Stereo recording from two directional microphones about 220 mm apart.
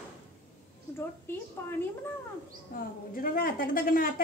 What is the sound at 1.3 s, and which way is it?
Speech, 10° left (ahead or behind).